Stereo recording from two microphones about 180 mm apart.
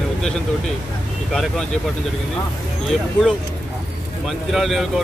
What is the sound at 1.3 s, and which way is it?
Speech, centre (ahead or behind).